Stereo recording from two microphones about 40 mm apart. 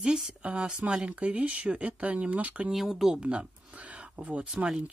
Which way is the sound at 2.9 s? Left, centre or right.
Centre.